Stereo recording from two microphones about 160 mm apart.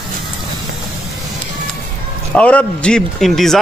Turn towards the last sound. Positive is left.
turn(degrees=0)  # may be behind; listen again after turning